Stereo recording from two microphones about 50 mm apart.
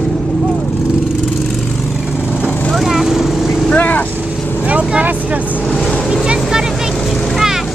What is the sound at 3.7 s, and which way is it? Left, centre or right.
Vehicle, left.